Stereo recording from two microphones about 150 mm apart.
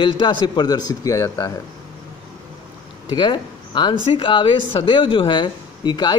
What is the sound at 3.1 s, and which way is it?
Speech, 30° left (ahead or behind).